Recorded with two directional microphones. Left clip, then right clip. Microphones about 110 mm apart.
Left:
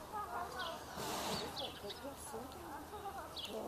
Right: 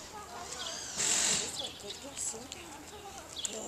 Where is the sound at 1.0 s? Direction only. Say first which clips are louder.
Right 10 dB; 35° right (ahead or behind).